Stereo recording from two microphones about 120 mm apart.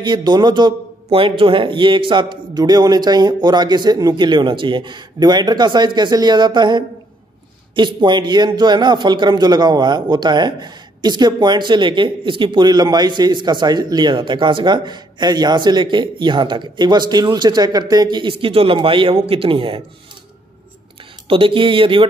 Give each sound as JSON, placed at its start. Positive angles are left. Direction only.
{"t": 0.0, "sound": "a man's voice", "side_deg": -40}
{"t": 21.3, "sound": "speech", "side_deg": -45}